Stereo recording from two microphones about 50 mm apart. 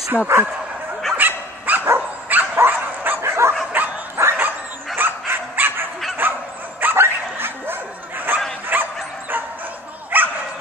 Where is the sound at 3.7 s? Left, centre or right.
Right.